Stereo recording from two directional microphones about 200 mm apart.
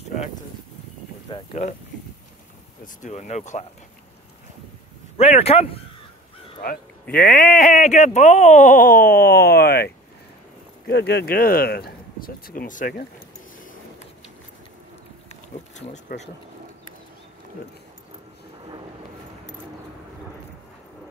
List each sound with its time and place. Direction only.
1.3 s speech: 30° left (ahead or behind)
2.8 s speech: 35° left (ahead or behind)
5.1 s speech: 30° left (ahead or behind)
6.6 s speech: 50° left (ahead or behind)
10.9 s speech: 55° left (ahead or behind); by 13.0 s 40° left (ahead or behind)
15.2 s insect: 35° left (ahead or behind)